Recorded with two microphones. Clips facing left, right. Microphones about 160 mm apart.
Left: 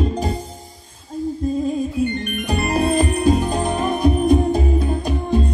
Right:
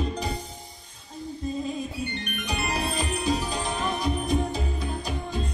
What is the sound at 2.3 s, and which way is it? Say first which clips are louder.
Music: left 9 dB; 50° left (ahead or behind).